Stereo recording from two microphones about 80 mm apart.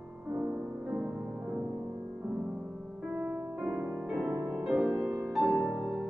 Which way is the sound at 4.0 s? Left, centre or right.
Centre.